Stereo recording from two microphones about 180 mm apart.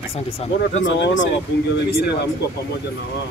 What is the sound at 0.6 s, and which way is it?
Speech, 90° left.